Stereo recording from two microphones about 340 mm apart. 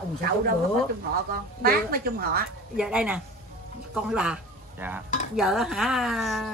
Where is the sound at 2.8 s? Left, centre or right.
Centre.